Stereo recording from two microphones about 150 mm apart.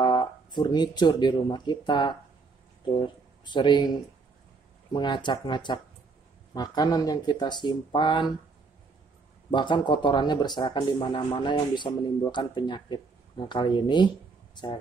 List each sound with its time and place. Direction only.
0.0 s speech: 30° left (ahead or behind)
3.4 s speech: 30° left (ahead or behind)
9.5 s speech: 30° left (ahead or behind)